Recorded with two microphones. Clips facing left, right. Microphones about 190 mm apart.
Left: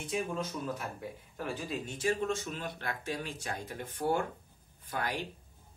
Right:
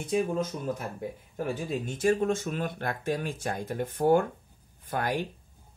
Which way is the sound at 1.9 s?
50° right (ahead or behind).